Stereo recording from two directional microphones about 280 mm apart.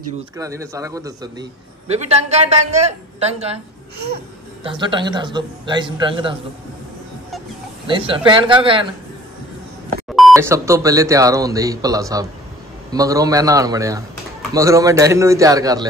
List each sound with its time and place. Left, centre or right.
0.4 s speech: centre
1.9 s a woman's voice: right
4.6 s speech: centre
7.8 s speech: centre
10.3 s speech: centre